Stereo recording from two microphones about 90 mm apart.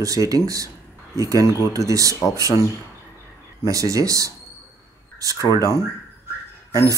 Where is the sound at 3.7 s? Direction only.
40° right (ahead or behind).